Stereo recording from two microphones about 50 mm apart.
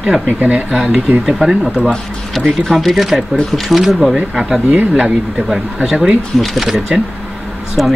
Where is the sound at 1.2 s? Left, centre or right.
Centre.